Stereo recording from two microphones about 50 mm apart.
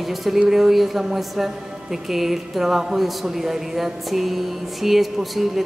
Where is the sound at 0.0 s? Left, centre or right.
Centre.